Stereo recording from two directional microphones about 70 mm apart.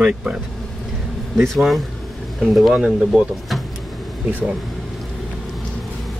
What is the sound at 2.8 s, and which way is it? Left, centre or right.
Speech, centre.